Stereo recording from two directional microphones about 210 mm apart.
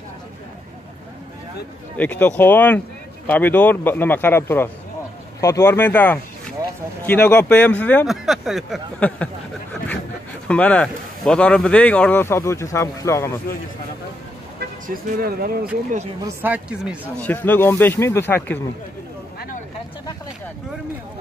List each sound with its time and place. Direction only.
2.0 s speech: 5° left (ahead or behind)
10.5 s speech: 5° left (ahead or behind)
14.6 s speech: 45° right (ahead or behind)
16.4 s speech: 5° right (ahead or behind)
17.2 s speech: 10° left (ahead or behind)